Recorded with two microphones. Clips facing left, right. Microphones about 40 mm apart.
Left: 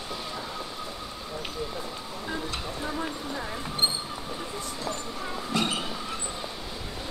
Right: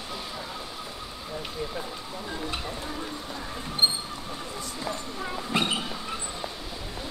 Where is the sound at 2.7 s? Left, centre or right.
Centre.